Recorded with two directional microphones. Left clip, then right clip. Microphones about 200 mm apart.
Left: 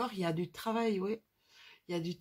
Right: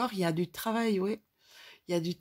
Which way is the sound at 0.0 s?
45° right (ahead or behind).